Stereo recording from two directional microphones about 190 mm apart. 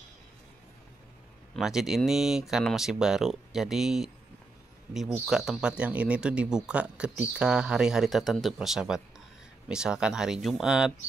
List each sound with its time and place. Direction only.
1.6 s speech: centre (ahead or behind)
5.2 s speech: centre (ahead or behind)